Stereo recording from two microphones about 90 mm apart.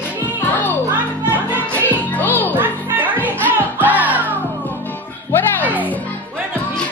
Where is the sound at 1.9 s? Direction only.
20° left (ahead or behind).